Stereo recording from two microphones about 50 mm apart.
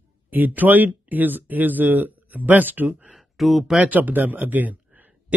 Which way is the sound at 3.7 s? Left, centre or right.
Right.